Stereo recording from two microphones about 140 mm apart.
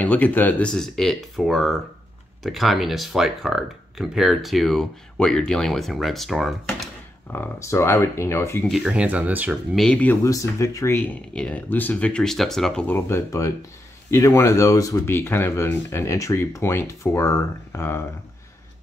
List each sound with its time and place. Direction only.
0.0 s speech: 10° left (ahead or behind)
7.3 s speech: 20° left (ahead or behind)
8.6 s speech: 5° right (ahead or behind)
9.8 s speech: 5° left (ahead or behind)
10.2 s speech: 20° left (ahead or behind); by 12.8 s 5° left (ahead or behind)
12.8 s speech: 20° left (ahead or behind)